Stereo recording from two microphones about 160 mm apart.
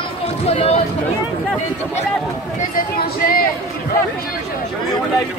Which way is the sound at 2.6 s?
60° left (ahead or behind).